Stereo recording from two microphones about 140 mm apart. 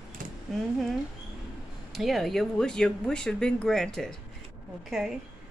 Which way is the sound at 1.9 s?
Centre (ahead or behind).